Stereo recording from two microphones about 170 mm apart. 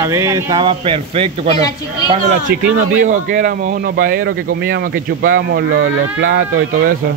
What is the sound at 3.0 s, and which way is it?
Speech, 50° right (ahead or behind).